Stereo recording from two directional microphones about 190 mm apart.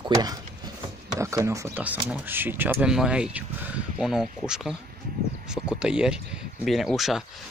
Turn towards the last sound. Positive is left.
turn(degrees=0)  # may be behind; listen again after turning